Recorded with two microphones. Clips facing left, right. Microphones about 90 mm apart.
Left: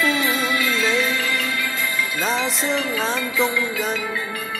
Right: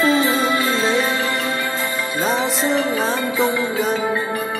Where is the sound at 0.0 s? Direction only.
35° right (ahead or behind).